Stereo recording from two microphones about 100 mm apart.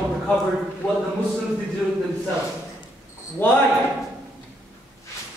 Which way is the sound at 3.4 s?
20° left (ahead or behind).